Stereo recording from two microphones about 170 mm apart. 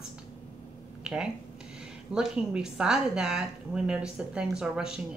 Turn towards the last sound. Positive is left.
turn(degrees=-5)  # may be behind; listen again after turning